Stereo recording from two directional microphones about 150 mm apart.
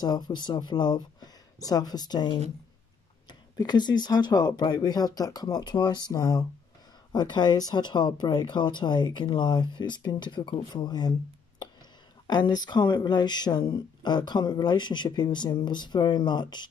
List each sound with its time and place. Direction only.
0.0 s speech: 30° left (ahead or behind)
12.3 s speech: 30° left (ahead or behind)